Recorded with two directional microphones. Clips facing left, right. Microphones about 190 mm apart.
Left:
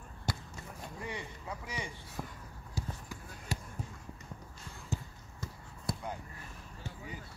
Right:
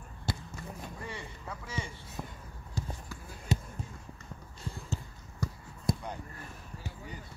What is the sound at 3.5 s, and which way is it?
Basketball bounce, 20° right (ahead or behind).